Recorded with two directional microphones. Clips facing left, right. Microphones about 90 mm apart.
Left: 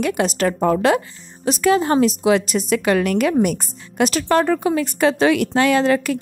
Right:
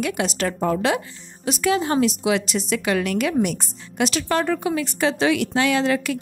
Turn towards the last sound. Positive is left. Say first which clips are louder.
# left 4 dB
turn(degrees=45)  # may be behind; listen again after turning